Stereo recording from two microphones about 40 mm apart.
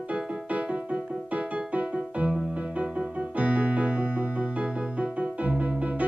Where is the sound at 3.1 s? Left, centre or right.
Right.